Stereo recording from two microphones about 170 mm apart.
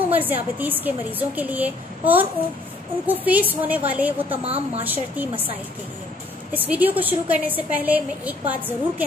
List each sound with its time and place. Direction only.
0.1 s a woman's voice: 10° right (ahead or behind)
4.4 s a woman's voice: 35° right (ahead or behind)
4.8 s a woman's voice: 10° right (ahead or behind)
6.5 s a woman's voice: 10° right (ahead or behind)